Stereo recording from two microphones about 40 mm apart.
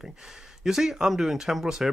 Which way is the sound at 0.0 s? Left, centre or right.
Centre.